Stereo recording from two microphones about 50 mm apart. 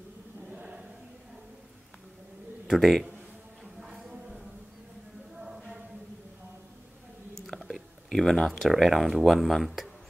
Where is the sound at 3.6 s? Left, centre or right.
Centre.